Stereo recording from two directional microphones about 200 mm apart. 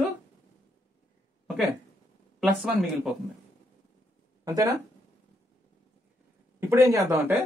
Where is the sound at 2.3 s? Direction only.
Centre (ahead or behind).